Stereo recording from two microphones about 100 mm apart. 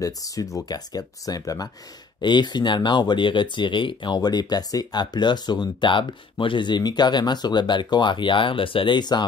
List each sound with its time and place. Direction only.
0.0 s speech: 35° left (ahead or behind)
2.2 s speech: 50° left (ahead or behind)